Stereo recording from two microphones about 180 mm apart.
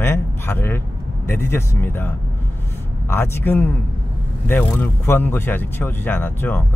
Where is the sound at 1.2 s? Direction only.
10° left (ahead or behind).